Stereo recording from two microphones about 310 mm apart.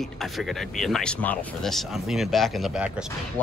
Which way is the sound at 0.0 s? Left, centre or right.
Centre.